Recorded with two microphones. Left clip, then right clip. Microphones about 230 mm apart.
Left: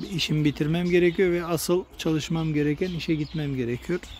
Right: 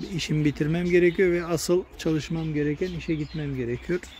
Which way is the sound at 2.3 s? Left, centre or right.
Left.